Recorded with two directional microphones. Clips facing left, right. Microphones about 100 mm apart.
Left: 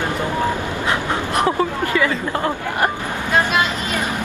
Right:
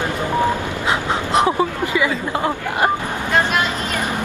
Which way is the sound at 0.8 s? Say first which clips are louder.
Right 1 dB; 20° right (ahead or behind).